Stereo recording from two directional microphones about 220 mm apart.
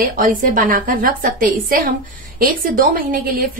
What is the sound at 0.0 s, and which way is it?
A woman's voice, 40° right (ahead or behind).